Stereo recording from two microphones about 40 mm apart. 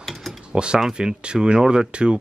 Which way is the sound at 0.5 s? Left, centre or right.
Right.